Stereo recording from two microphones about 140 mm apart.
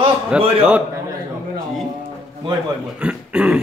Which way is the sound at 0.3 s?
5° right (ahead or behind).